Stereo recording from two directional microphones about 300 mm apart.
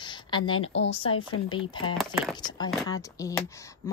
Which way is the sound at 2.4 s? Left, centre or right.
Centre.